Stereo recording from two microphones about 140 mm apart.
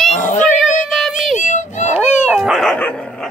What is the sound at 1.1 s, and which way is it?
Music, 60° left (ahead or behind).